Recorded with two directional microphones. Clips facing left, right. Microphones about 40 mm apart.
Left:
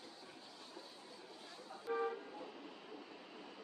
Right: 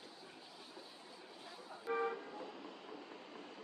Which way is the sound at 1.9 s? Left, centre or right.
Right.